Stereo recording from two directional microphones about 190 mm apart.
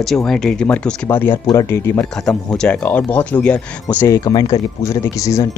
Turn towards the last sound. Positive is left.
turn(degrees=15)  # may be behind; listen again after turning